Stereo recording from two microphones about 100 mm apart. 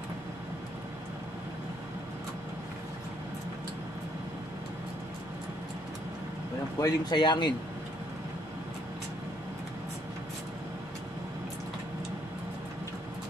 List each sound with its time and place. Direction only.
6.8 s speech: 45° left (ahead or behind)